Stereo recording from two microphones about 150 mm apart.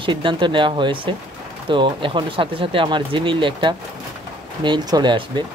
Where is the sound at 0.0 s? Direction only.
35° right (ahead or behind).